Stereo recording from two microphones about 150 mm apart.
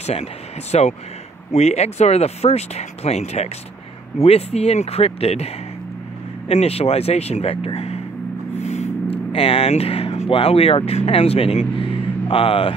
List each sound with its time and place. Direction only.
0.0 s speech: 45° left (ahead or behind)
6.5 s speech: 45° left (ahead or behind)
8.5 s a sound: 50° left (ahead or behind)
9.3 s speech: 40° left (ahead or behind)